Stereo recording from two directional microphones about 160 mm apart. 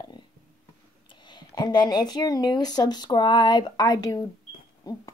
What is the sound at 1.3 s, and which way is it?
A woman's voice, 25° left (ahead or behind).